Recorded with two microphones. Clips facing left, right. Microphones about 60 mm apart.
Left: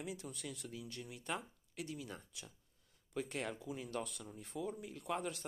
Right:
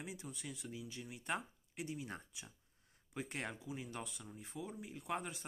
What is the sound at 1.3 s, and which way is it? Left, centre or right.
Speech, right.